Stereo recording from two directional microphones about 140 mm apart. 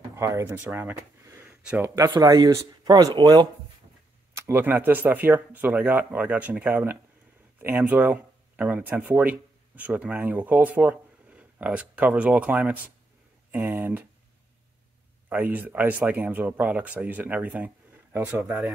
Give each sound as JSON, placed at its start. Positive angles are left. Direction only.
{"t": 0.1, "sound": "speech", "side_deg": -20}
{"t": 4.4, "sound": "speech", "side_deg": -15}
{"t": 15.2, "sound": "speech", "side_deg": -15}